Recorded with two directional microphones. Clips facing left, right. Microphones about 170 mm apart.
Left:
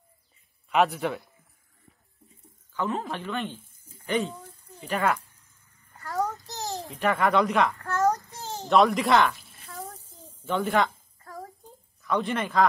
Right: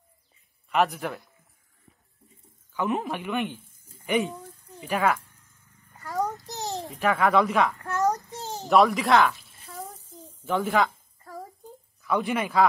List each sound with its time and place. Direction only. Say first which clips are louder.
0.7 s speech: left 1 dB; centre (ahead or behind)
2.7 s speech: right 2 dB; 15° right (ahead or behind)
5.9 s child singing: even; 15° right (ahead or behind)
6.9 s speech: right 1 dB; centre (ahead or behind)
7.7 s a sound: left 1 dB; 20° right (ahead or behind)
8.6 s a sound: right 1 dB; centre (ahead or behind)
12.0 s speech: right 1 dB; 5° right (ahead or behind)